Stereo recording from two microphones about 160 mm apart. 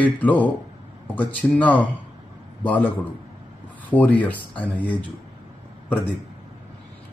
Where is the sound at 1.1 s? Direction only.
10° left (ahead or behind).